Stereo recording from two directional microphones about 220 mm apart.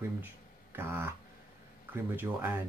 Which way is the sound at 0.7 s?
10° right (ahead or behind).